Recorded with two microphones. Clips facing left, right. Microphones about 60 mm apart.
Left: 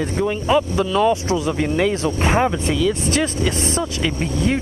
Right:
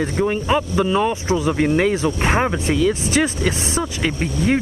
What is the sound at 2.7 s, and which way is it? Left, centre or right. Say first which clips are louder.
Speech: right 1 dB; right.